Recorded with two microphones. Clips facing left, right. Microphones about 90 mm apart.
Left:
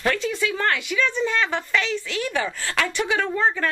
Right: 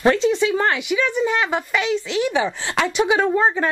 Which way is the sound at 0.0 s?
25° right (ahead or behind).